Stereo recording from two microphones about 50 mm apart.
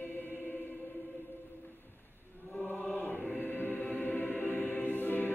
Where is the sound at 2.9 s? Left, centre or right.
Left.